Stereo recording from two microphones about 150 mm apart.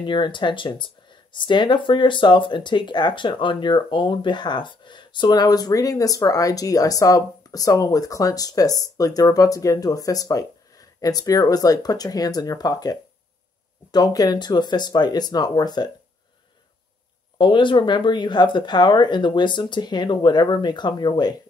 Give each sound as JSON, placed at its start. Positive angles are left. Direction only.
{"t": 0.0, "sound": "speech", "side_deg": 30}
{"t": 13.9, "sound": "speech", "side_deg": 25}
{"t": 17.4, "sound": "speech", "side_deg": 30}